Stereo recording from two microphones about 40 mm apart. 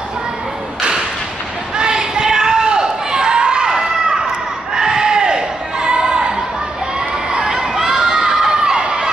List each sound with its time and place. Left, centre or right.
1.8 s a sound: centre
4.7 s crowd: centre
7.3 s crowd: centre